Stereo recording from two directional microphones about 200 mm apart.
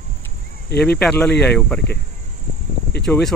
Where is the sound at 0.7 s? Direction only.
55° left (ahead or behind).